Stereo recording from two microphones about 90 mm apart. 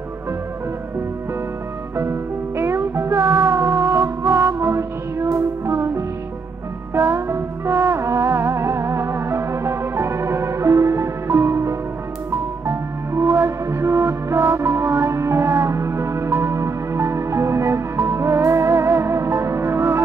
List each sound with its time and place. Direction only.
2.0 s music: 30° right (ahead or behind)